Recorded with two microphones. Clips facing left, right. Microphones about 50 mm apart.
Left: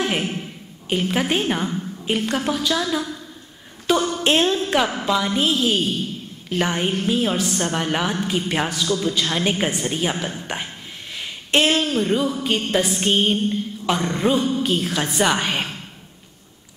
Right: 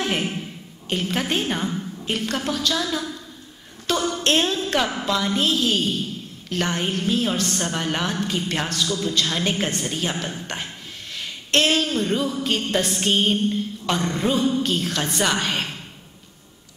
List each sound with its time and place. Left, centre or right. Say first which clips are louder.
0.8 s speech: left 3 dB; centre
4.2 s speech: left 2 dB; centre
8.8 s a man's voice: left 3 dB; left
9.1 s speech: left 1 dB; centre